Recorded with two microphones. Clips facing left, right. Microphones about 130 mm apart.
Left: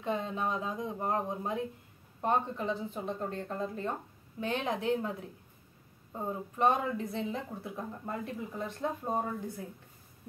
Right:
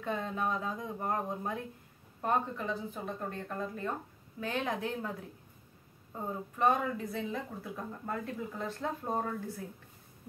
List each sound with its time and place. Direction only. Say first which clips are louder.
0.0 s speech: left 1 dB; 20° left (ahead or behind)
6.6 s speech: left 1 dB; 25° left (ahead or behind)